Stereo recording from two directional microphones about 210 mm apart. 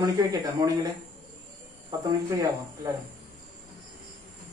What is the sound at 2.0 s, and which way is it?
Speech, 15° right (ahead or behind).